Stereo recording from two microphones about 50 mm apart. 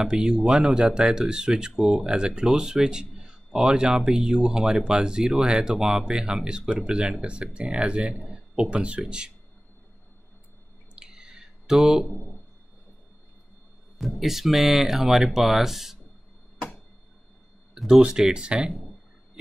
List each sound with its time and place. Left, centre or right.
0.0 s speech: centre
11.0 s a sound: centre
13.9 s speech: centre
17.7 s speech: centre